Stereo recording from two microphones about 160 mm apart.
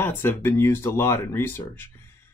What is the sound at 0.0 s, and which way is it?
Speech, 15° left (ahead or behind).